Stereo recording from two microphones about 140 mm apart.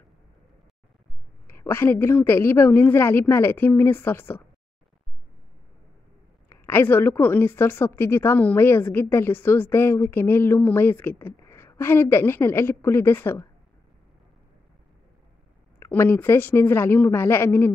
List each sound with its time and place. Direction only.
1.5 s a woman's voice: 15° left (ahead or behind)
6.5 s a woman's voice: 15° left (ahead or behind)
15.8 s a woman's voice: 15° left (ahead or behind)